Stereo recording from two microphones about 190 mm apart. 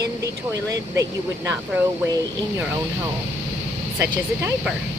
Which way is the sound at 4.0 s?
10° right (ahead or behind).